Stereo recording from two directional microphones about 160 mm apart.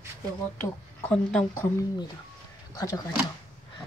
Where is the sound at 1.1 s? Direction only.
5° left (ahead or behind).